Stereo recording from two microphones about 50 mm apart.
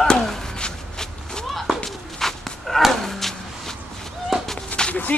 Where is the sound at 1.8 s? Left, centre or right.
Centre.